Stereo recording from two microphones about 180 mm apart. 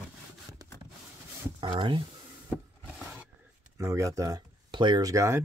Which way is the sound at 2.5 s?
10° right (ahead or behind).